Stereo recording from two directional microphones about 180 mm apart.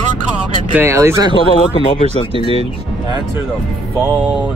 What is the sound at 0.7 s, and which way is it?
Speech, 15° right (ahead or behind).